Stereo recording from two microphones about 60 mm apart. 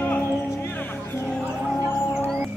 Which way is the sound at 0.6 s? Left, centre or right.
Left.